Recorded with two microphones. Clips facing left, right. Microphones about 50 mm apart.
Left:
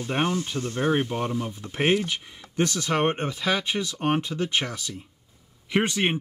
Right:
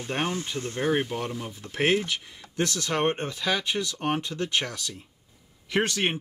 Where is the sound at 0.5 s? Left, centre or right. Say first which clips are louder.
Left 2 dB; left.